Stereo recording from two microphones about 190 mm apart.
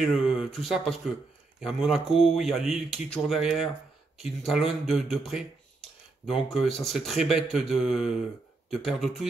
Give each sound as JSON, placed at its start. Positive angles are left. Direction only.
{"t": 0.0, "sound": "speech", "side_deg": 0}
{"t": 6.5, "sound": "speech", "side_deg": 0}